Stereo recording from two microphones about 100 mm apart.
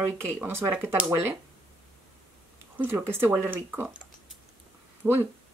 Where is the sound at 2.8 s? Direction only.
20° right (ahead or behind).